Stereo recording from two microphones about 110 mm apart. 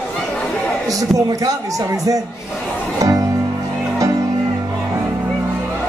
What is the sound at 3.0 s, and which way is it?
Music, 30° right (ahead or behind).